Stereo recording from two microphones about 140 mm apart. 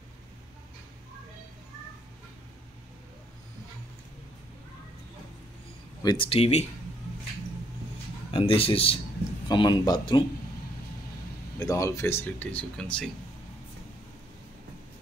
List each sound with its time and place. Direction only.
6.0 s speech: 40° left (ahead or behind)
8.3 s speech: 40° left (ahead or behind)
9.5 s speech: 30° left (ahead or behind)
11.6 s speech: 25° left (ahead or behind); by 13.1 s 5° left (ahead or behind)